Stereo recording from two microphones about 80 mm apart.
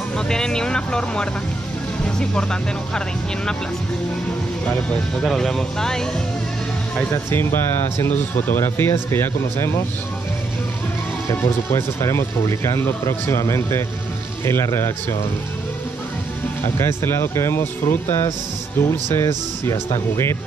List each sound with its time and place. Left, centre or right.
0.3 s speech: centre
5.2 s speech: centre
8.4 s speech: left
11.2 s speech: left
16.6 s speech: left